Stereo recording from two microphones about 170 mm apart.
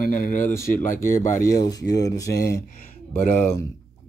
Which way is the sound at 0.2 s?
50° left (ahead or behind).